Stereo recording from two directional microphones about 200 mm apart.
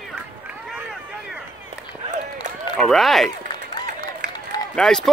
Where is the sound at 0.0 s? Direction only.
Centre (ahead or behind).